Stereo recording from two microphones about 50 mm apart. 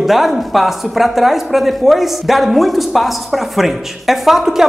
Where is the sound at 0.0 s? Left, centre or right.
Centre.